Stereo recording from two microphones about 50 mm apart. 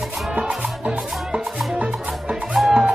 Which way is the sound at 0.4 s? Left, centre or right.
Centre.